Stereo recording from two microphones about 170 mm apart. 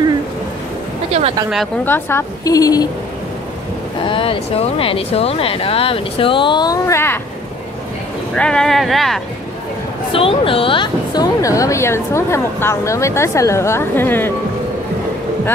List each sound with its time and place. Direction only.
1.9 s speech: 15° left (ahead or behind)
4.0 s speech: 30° left (ahead or behind); by 7.2 s 15° left (ahead or behind)
8.4 s speech: 5° left (ahead or behind)
10.1 s a woman's voice: 30° left (ahead or behind); by 14.3 s 10° left (ahead or behind)